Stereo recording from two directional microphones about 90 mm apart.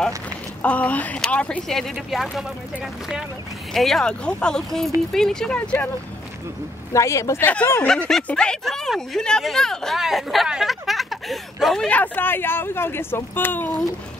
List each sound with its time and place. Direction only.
0.6 s speech: 15° left (ahead or behind)
2.3 s speech: 5° right (ahead or behind); by 5.9 s 10° left (ahead or behind)
6.9 s speech: 35° left (ahead or behind)
7.4 s speech: 25° left (ahead or behind)
8.2 s speech: 10° left (ahead or behind)
11.9 s speech: 20° left (ahead or behind)